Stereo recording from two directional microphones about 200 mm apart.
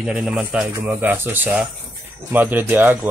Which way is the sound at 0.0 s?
5° right (ahead or behind).